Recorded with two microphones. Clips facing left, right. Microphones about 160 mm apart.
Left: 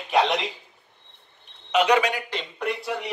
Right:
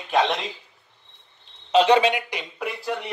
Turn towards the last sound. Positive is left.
turn(degrees=0)  # may be behind; listen again after turning